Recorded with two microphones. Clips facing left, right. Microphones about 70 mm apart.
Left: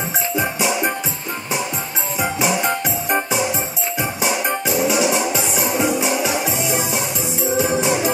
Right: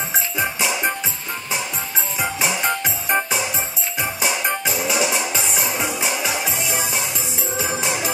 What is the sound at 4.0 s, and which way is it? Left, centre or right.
Music, left.